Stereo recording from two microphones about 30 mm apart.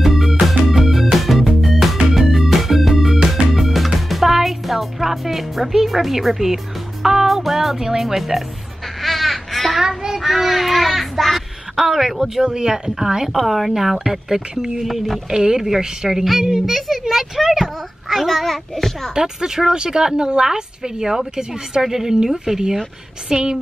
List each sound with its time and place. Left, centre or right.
0.0 s music: centre
7.2 s speech: centre
9.0 s honk: centre
9.7 s child singing: centre
10.2 s a child's voice: centre
11.7 s speech: centre
12.4 s speech: right; by 15.0 s centre
15.6 s speech: centre
16.6 s speech: centre
18.3 s a child's voice: centre
19.1 s speech: centre